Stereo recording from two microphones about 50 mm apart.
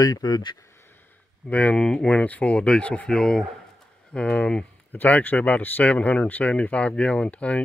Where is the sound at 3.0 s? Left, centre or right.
Centre.